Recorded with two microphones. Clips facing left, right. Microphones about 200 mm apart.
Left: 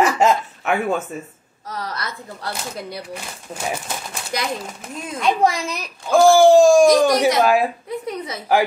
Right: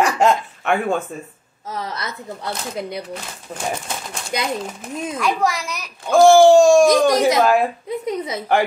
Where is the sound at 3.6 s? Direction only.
5° left (ahead or behind).